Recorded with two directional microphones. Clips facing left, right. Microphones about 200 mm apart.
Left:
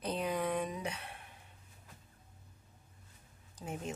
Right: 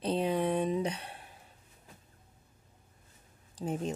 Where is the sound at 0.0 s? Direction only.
30° right (ahead or behind).